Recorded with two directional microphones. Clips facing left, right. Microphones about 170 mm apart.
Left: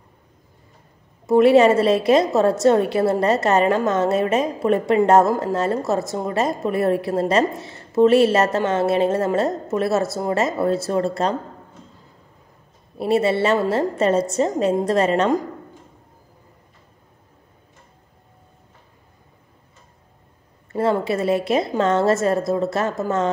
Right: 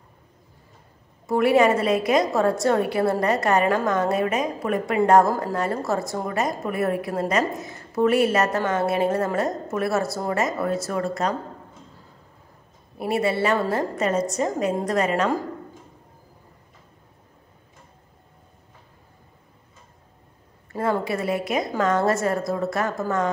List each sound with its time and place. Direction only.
1.2 s a woman's voice: 25° left (ahead or behind)
12.9 s a woman's voice: 25° left (ahead or behind)
20.7 s a woman's voice: 25° left (ahead or behind)